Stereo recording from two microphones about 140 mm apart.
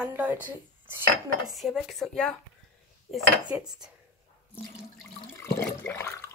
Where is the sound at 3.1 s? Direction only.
5° right (ahead or behind).